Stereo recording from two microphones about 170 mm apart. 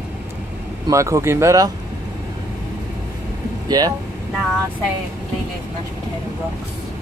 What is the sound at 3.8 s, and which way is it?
Speech, 25° right (ahead or behind).